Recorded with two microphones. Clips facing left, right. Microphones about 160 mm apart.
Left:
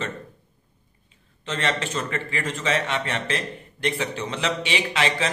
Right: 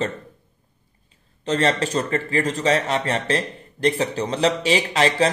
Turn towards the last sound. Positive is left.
turn(degrees=-40)  # may be behind; listen again after turning